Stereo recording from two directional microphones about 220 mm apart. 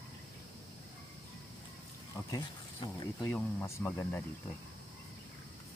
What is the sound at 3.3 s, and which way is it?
Speech, 5° left (ahead or behind).